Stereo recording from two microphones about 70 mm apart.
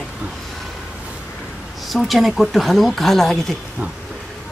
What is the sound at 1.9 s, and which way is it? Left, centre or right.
Speech, centre.